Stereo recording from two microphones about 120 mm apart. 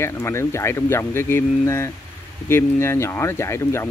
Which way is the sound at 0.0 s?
20° left (ahead or behind).